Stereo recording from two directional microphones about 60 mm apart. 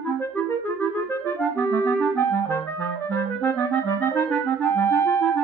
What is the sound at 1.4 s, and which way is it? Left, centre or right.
Clarinet, left.